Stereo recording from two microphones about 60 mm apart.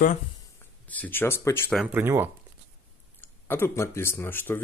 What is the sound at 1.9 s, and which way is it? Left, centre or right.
Speech, right.